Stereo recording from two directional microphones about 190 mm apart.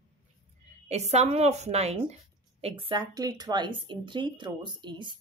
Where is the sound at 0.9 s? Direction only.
35° right (ahead or behind).